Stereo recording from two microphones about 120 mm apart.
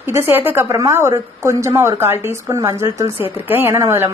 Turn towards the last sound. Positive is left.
turn(degrees=-20)  # may be behind; listen again after turning